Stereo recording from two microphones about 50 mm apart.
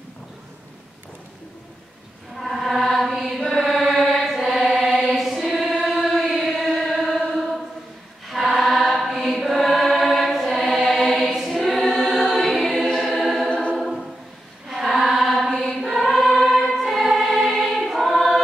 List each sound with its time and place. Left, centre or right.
2.3 s music: centre
8.3 s choir: centre
13.5 s a capella: left
13.7 s a capella: centre
14.7 s choir: centre